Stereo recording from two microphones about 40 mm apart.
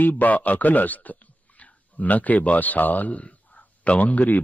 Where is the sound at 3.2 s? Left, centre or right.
Left.